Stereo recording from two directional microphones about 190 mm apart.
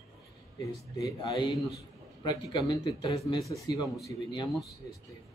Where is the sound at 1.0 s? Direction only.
20° left (ahead or behind).